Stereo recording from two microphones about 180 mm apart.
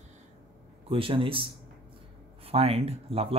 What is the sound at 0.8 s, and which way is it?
A man's voice, 30° right (ahead or behind).